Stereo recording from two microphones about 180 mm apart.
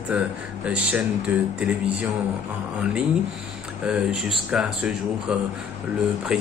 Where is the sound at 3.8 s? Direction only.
5° right (ahead or behind).